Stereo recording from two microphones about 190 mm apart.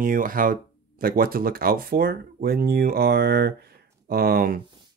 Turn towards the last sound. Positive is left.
turn(degrees=-50)  # may be behind; listen again after turning